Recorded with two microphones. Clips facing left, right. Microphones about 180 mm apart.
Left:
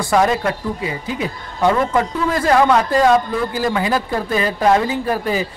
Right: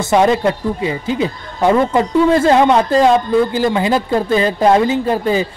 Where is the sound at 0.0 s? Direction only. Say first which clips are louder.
Right 4 dB; 25° right (ahead or behind).